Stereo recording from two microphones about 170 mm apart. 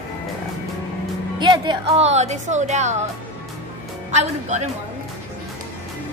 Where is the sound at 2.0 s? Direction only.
40° right (ahead or behind).